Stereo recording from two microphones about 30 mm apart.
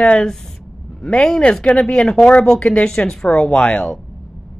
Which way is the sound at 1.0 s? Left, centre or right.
Left.